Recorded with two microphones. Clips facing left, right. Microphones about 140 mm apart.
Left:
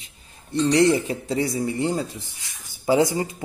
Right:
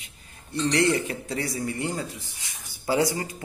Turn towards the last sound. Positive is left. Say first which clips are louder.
# left 4 dB
turn(degrees=20)  # may be behind; listen again after turning